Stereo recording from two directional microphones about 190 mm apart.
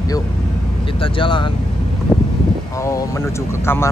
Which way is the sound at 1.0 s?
25° left (ahead or behind).